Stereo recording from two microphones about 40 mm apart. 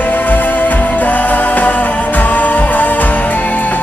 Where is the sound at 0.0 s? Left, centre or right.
Left.